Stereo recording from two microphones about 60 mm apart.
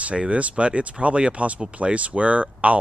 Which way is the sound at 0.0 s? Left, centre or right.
Right.